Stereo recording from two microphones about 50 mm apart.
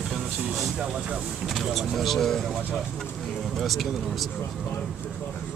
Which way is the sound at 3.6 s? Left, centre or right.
Centre.